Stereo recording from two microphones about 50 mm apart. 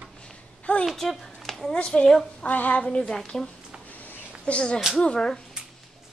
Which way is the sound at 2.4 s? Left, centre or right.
Left.